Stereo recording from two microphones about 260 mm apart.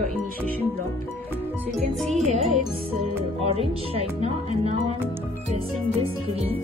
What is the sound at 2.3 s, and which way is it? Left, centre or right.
Music, right.